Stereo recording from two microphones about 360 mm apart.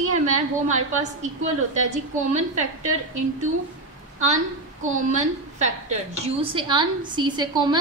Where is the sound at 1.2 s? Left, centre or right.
Centre.